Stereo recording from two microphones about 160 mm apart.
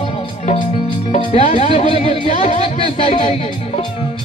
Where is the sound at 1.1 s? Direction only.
40° left (ahead or behind).